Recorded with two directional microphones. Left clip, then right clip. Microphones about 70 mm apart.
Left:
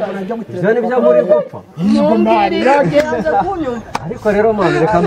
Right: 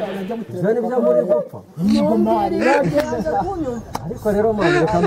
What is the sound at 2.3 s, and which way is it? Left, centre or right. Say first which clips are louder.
Speech: left 6 dB; left.